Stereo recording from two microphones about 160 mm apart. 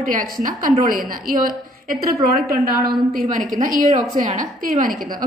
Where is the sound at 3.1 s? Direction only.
60° right (ahead or behind).